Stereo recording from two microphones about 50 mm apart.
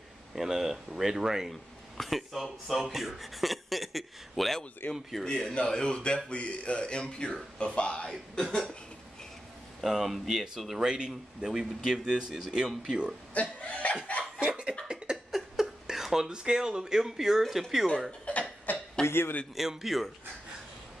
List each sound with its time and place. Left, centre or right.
0.4 s speech: centre
1.5 s speech: centre
4.8 s speech: left
5.2 s a man's voice: centre
9.8 s speech: centre
13.3 s speech: left
14.9 s cough: centre
15.3 s speech: centre
18.3 s speech: left
18.7 s a sound: left
19.0 s speech: left
19.5 s speech: centre